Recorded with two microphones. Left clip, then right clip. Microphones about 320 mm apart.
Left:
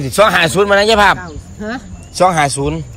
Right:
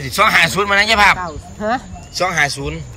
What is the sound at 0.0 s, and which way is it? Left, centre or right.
Speech, centre.